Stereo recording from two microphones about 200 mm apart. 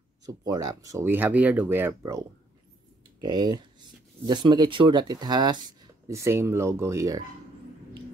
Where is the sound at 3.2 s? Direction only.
20° right (ahead or behind).